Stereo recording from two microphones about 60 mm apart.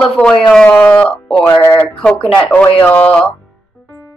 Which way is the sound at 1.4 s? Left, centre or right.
Left.